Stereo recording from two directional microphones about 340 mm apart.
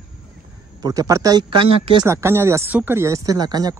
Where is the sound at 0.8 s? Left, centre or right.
Centre.